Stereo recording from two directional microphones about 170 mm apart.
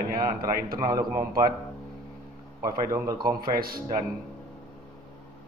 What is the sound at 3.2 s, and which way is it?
Speech, 60° right (ahead or behind).